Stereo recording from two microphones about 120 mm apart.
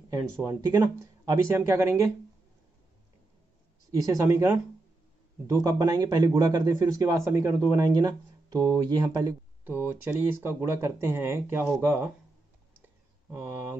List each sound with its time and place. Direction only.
0.1 s speech: 30° right (ahead or behind)
3.9 s speech: 25° right (ahead or behind)
9.7 s speech: 15° right (ahead or behind)
13.3 s speech: 20° right (ahead or behind)